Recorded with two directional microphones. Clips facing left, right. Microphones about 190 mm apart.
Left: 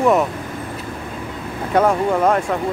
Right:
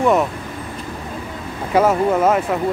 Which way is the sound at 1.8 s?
5° right (ahead or behind).